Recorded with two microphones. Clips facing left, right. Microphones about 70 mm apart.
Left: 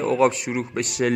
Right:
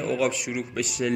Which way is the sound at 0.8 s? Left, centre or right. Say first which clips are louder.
Left 4 dB; left.